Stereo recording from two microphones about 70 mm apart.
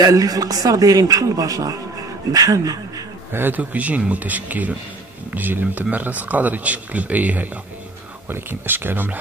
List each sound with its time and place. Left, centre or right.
0.0 s a man's voice: right
3.3 s speech: right